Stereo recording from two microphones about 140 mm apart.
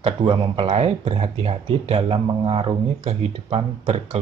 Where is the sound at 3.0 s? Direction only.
50° right (ahead or behind).